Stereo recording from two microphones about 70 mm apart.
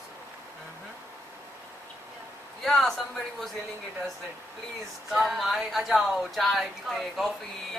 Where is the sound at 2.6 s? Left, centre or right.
Centre.